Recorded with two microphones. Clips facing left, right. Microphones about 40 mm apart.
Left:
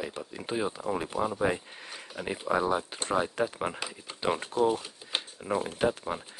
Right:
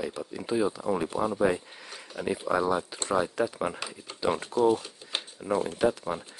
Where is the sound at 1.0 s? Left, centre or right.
Centre.